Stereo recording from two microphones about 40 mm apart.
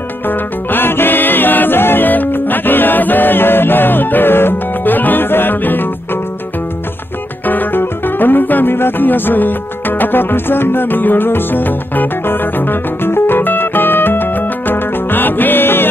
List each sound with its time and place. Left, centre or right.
0.7 s music: left
2.0 s music: left
7.4 s music: left